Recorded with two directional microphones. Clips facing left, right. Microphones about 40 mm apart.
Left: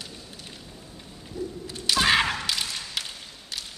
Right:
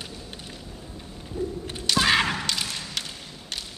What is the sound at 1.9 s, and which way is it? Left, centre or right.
Thump, centre.